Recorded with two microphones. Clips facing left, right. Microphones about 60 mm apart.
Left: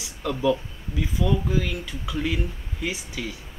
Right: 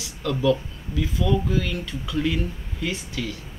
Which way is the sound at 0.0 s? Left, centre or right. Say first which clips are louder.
Right 1 dB; centre.